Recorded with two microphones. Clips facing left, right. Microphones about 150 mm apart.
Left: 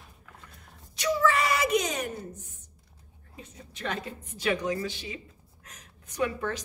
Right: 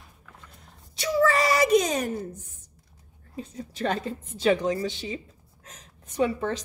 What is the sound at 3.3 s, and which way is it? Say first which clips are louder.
A woman's voice: right 11 dB; 35° right (ahead or behind).